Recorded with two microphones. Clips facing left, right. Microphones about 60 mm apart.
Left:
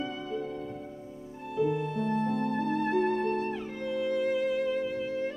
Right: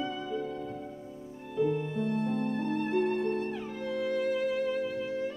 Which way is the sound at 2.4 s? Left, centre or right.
Left.